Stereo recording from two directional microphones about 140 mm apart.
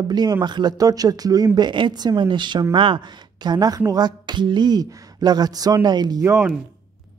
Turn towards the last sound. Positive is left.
turn(degrees=-10)  # may be behind; listen again after turning